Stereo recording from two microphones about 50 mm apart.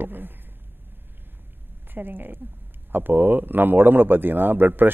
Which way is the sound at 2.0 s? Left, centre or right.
Right.